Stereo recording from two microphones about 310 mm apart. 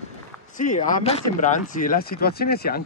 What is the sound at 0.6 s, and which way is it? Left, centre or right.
Speech, left.